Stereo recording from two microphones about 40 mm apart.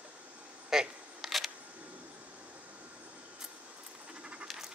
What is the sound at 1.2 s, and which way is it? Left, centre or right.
Single-lens reflex camera, centre.